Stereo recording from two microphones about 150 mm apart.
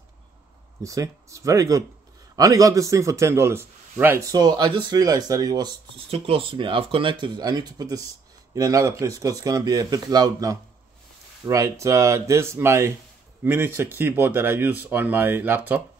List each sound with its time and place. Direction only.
0.8 s a man's voice: 20° right (ahead or behind)